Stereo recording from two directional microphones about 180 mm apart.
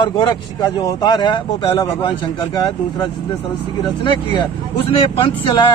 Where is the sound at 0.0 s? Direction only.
25° left (ahead or behind).